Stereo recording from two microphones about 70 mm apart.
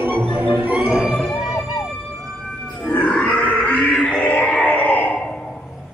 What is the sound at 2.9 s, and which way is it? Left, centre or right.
Grunt, centre.